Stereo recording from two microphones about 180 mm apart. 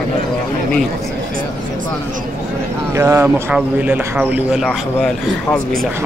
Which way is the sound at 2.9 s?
15° right (ahead or behind).